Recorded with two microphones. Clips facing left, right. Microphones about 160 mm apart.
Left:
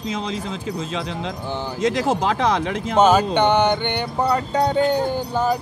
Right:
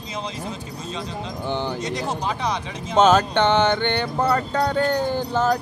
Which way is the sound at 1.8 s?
90° left.